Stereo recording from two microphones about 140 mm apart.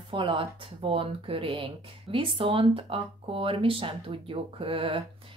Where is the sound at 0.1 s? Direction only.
35° right (ahead or behind).